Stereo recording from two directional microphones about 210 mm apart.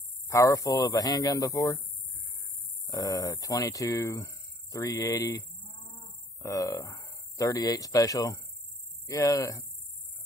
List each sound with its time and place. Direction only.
0.3 s speech: 15° left (ahead or behind)
2.9 s speech: 15° left (ahead or behind)